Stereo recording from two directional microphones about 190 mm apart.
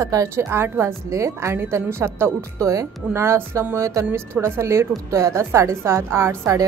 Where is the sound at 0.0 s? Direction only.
15° right (ahead or behind).